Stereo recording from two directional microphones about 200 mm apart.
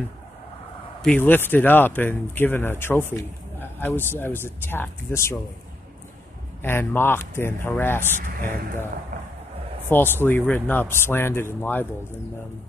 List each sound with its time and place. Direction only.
1.0 s speech: 10° left (ahead or behind)
6.6 s speech: 10° left (ahead or behind)
9.8 s speech: 10° left (ahead or behind)